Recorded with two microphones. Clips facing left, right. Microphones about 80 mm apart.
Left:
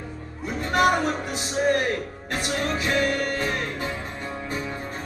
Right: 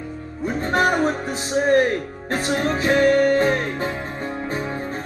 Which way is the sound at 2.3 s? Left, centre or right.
Right.